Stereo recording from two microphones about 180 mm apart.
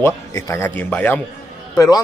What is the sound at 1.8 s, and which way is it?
Speech, 20° left (ahead or behind).